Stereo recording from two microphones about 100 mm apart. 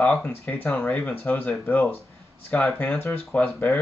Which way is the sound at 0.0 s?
15° left (ahead or behind).